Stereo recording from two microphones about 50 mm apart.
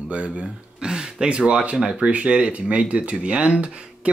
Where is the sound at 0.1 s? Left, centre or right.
Right.